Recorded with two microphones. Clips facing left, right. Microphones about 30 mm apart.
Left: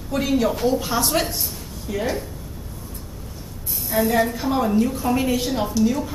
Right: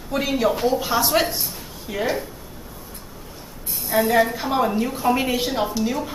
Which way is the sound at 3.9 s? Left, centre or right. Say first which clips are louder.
Right 2 dB; centre.